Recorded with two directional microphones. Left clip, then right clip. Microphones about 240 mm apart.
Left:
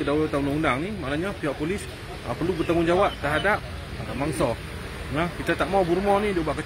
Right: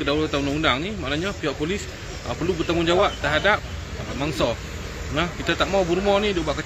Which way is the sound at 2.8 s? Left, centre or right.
Centre.